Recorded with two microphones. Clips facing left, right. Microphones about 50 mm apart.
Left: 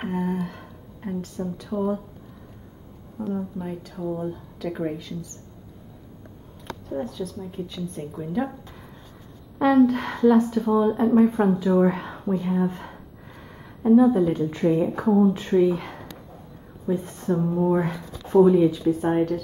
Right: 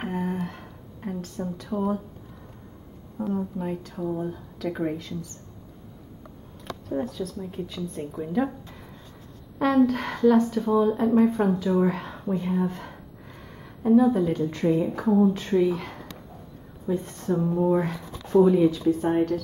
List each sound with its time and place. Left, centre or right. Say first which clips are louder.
0.0 s a sound: left 2 dB; centre
1.7 s speech: left 1 dB; centre
3.2 s speech: right 1 dB; centre
6.9 s speech: right 1 dB; centre
9.6 s speech: left 3 dB; centre
11.1 s speech: left 2 dB; left
11.5 s speech: left 3 dB; centre
12.6 s speech: left 2 dB; centre
12.9 s a sound: left 1 dB; centre
14.8 s speech: left 1 dB; left
17.5 s speech: even; centre
18.2 s a sound: left 2 dB; left
18.7 s speech: left 1 dB; centre